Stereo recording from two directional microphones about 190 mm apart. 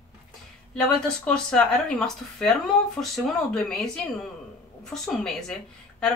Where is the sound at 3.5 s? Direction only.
5° left (ahead or behind).